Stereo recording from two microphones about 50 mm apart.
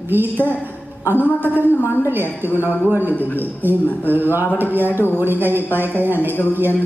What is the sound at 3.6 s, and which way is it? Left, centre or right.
A man's voice, right.